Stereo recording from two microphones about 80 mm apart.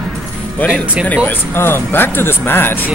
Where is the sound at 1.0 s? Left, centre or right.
Left.